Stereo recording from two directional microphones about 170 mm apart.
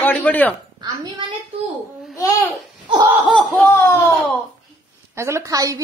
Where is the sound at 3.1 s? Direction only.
10° right (ahead or behind).